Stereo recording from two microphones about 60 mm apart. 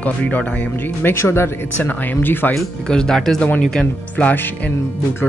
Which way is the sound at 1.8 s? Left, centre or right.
Left.